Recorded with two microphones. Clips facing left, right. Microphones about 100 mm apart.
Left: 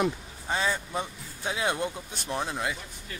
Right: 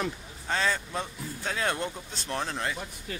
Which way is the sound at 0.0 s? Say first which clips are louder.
Left 5 dB; 15° left (ahead or behind).